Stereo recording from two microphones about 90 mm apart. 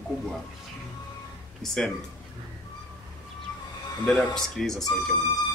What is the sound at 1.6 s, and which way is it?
Speech, 5° left (ahead or behind).